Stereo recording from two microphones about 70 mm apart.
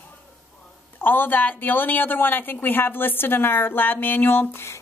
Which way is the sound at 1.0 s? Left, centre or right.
Left.